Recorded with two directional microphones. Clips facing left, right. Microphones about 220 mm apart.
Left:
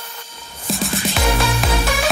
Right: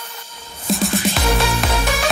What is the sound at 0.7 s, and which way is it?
Music, centre (ahead or behind).